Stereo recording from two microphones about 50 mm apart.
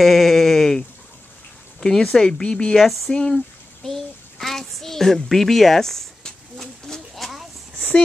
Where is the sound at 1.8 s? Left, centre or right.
Centre.